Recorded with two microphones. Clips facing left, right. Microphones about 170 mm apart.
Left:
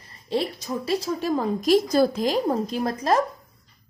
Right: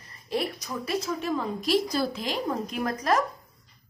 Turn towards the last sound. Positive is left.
turn(degrees=30)  # may be behind; listen again after turning